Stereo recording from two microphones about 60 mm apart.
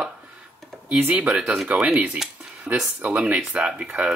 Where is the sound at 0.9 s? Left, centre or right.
Right.